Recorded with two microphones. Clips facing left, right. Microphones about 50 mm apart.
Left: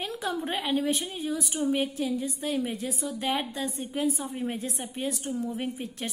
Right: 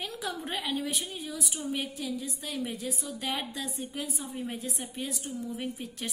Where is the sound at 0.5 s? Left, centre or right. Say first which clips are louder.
Left 6 dB; left.